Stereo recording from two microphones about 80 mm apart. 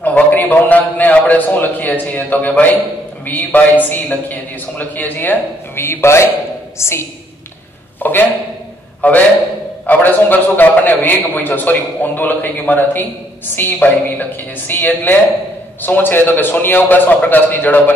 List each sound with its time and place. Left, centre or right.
0.0 s a man's voice: left
8.0 s a man's voice: left